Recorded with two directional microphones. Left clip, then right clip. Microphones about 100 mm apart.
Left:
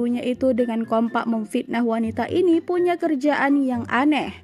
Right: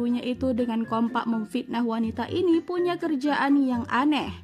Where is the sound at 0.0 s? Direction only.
30° left (ahead or behind).